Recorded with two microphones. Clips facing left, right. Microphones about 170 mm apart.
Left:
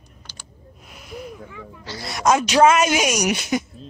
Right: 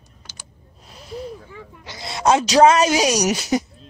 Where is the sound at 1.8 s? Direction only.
20° right (ahead or behind).